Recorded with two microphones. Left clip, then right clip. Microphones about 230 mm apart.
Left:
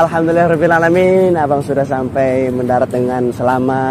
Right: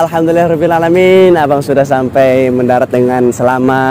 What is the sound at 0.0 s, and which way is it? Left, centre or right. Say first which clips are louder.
A man's voice: right 2 dB; right.